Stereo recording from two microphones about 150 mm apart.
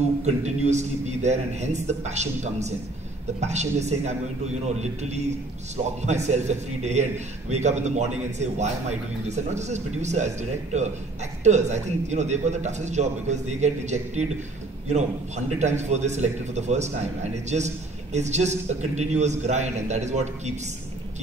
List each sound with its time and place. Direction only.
0.0 s a man's voice: 50° right (ahead or behind)